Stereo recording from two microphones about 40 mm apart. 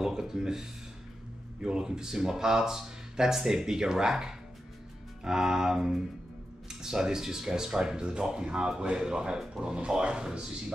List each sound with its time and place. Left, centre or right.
0.0 s speech: centre